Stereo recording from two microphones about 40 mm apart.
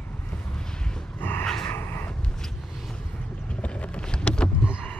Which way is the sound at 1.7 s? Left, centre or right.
Left.